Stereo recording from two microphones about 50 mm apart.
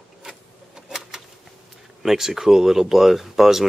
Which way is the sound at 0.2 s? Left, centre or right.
Centre.